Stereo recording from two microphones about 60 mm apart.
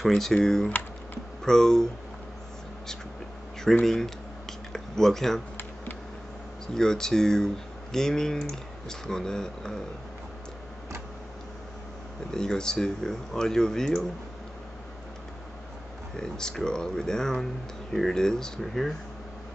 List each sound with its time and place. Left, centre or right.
0.0 s speech: centre
0.7 s computer keyboard: left
1.4 s speech: centre
3.8 s speech: centre
6.7 s speech: centre
12.3 s speech: centre
16.2 s speech: centre